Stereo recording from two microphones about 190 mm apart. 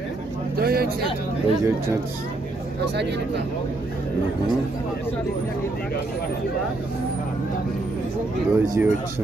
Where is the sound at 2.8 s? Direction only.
65° right (ahead or behind).